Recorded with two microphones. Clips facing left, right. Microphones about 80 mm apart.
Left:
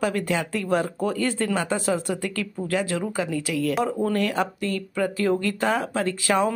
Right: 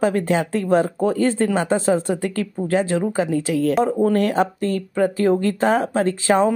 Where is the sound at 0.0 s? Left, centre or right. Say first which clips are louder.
Right 6 dB; right.